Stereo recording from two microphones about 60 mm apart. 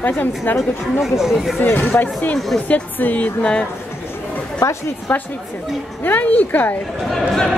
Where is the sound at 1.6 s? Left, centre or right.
Left; by 3.6 s centre.